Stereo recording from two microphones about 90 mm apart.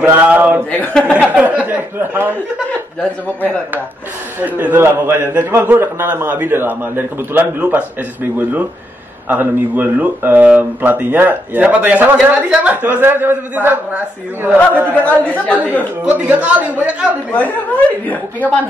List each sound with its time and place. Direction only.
0.0 s speech: 20° right (ahead or behind)
0.7 s speech: 15° left (ahead or behind)
1.3 s speech: 15° right (ahead or behind)
4.4 s speech: 20° right (ahead or behind)
15.0 s speech: 15° left (ahead or behind)
16.0 s a man's voice: 15° right (ahead or behind)
17.3 s speech: 15° left (ahead or behind)